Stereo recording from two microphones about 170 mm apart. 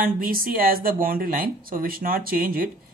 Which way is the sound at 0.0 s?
60° right (ahead or behind).